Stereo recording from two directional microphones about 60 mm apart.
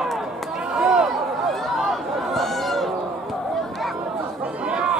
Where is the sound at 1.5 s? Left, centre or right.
Centre.